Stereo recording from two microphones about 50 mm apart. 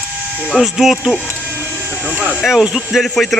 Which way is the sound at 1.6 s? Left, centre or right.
Right.